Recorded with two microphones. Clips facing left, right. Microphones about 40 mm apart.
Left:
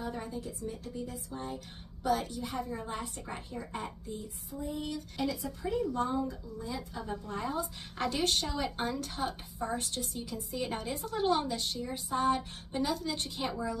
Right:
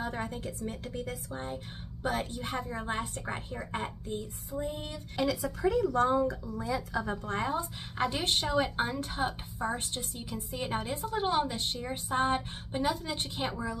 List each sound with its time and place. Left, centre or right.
0.0 s a woman's voice: right
1.3 s a woman's voice: right
5.1 s a woman's voice: right
7.9 s a woman's voice: right
11.1 s a woman's voice: centre; by 12.4 s right
12.7 s a woman's voice: right